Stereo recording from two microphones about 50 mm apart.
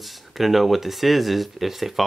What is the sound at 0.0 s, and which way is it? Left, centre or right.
Speech, centre.